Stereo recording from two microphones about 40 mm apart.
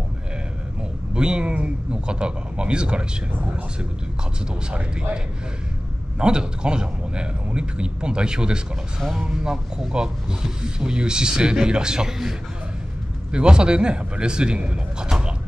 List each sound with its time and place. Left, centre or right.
1.1 s speech: right
4.6 s speech: right
13.3 s speech: right